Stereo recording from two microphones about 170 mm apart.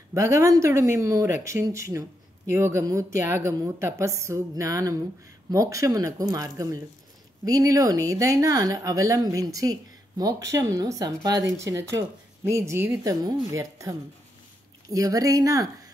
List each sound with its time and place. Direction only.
0.1 s speech: 20° right (ahead or behind)